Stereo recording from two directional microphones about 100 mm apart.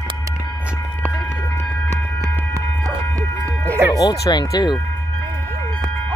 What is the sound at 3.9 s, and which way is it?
Speech, 35° left (ahead or behind).